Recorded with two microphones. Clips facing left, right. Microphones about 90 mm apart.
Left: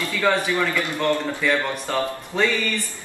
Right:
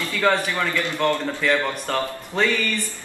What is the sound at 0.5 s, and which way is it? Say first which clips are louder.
Speech: left 1 dB; 20° left (ahead or behind).